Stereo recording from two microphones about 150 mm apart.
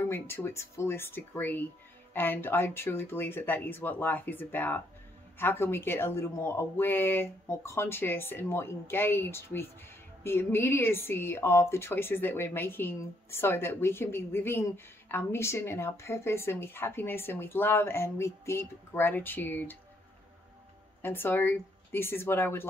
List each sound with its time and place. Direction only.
0.1 s speech: 15° left (ahead or behind)
21.0 s speech: 15° left (ahead or behind)